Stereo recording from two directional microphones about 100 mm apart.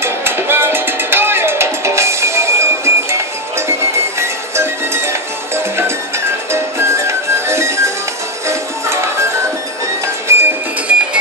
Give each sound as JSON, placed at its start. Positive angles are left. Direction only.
{"t": 0.0, "sound": "music", "side_deg": -25}
{"t": 10.3, "sound": "music", "side_deg": -25}
{"t": 10.9, "sound": "music", "side_deg": -10}